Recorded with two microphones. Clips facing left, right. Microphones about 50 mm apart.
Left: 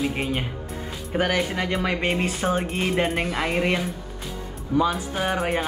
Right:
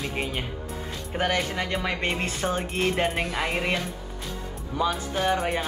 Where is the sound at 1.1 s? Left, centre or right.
Centre.